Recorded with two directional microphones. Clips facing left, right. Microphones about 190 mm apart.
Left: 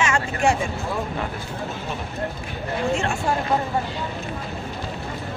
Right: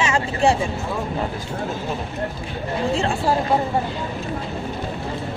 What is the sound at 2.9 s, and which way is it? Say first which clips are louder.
Speech: right 4 dB; 35° right (ahead or behind).